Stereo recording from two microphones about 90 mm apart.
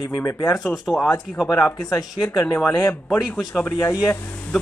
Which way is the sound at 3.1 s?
10° left (ahead or behind).